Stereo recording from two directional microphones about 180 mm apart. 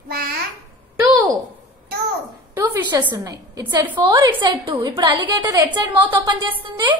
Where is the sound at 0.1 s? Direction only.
55° right (ahead or behind).